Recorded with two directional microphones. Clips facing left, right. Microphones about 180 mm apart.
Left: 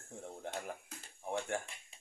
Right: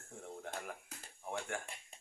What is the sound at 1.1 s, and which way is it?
Speech, 30° left (ahead or behind).